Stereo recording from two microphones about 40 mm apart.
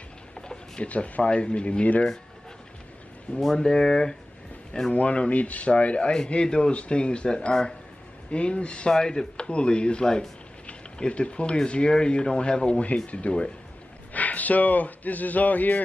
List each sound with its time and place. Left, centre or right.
0.4 s a sound: left
0.8 s speech: left
3.3 s speech: centre
4.9 s speech: left
8.9 s speech: centre
14.1 s speech: left